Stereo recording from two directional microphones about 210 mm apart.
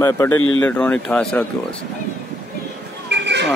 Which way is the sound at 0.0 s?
10° left (ahead or behind).